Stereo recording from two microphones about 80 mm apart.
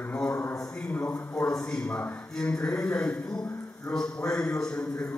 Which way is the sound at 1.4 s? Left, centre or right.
Centre.